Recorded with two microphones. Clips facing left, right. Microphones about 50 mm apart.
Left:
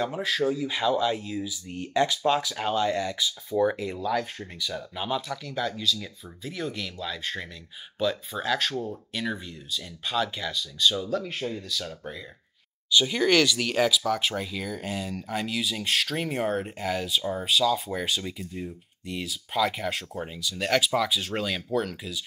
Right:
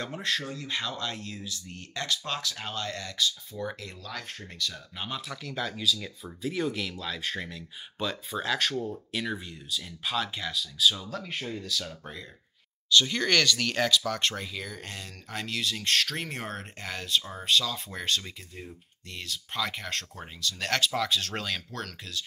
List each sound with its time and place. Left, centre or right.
0.0 s speech: centre